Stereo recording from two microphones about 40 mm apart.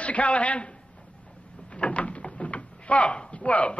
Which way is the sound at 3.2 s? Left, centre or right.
Left.